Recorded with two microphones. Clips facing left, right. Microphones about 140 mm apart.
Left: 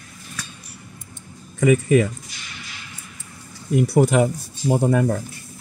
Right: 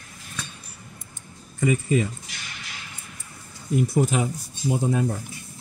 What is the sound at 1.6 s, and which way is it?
Speech, 80° left.